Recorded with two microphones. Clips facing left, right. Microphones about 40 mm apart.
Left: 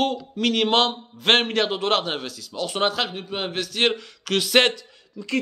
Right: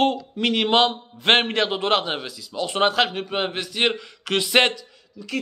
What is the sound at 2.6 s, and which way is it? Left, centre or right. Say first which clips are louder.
Speech: right 3 dB; right.